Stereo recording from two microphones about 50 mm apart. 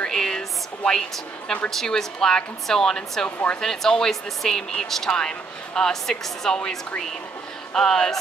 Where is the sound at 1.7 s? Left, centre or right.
Centre.